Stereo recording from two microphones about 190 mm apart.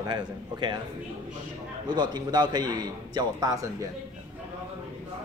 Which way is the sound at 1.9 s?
20° right (ahead or behind).